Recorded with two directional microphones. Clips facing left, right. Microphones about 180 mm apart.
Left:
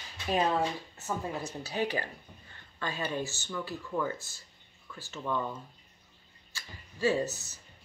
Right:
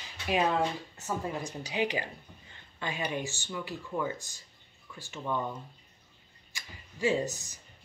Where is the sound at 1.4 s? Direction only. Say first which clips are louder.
Right 1 dB; 15° right (ahead or behind).